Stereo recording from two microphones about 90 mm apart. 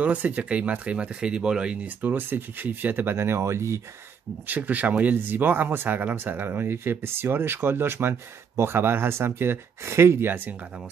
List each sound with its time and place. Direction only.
0.0 s speech: 15° right (ahead or behind); by 3.8 s 35° right (ahead or behind)
4.5 s speech: 20° right (ahead or behind)